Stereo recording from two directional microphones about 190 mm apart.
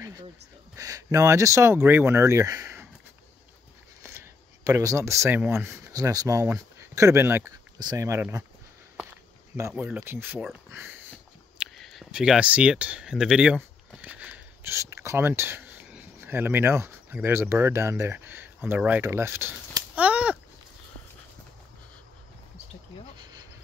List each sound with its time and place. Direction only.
0.7 s speech: 15° right (ahead or behind)
4.0 s speech: 15° right (ahead or behind)
9.7 s speech: 5° right (ahead or behind)
11.6 s speech: centre (ahead or behind)
23.1 s a sound: 20° right (ahead or behind)